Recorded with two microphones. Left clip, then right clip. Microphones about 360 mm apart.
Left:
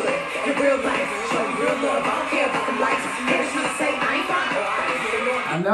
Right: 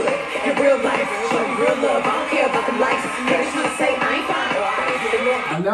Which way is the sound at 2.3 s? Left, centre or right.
Right.